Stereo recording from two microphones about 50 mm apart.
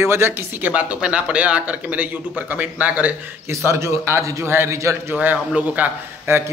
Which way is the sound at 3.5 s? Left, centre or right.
Right.